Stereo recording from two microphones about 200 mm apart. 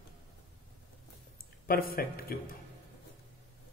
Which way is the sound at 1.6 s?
45° left (ahead or behind).